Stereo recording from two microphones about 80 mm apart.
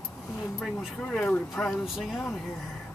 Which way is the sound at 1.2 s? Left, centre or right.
Left.